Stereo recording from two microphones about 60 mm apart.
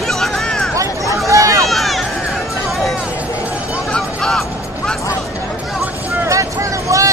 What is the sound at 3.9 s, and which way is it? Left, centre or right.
Vehicle, centre.